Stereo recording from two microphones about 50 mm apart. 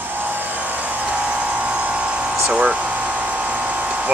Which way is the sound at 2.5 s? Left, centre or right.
Right.